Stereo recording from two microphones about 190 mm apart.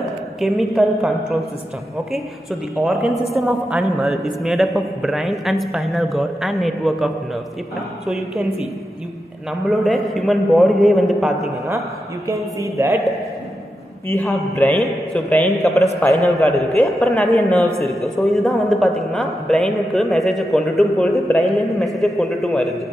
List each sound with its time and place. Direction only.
0.4 s a woman's voice: centre (ahead or behind)
2.8 s a woman's voice: centre (ahead or behind)
9.5 s a woman's voice: centre (ahead or behind)
12.5 s a man's voice: 15° right (ahead or behind)
14.1 s a man's voice: 10° left (ahead or behind)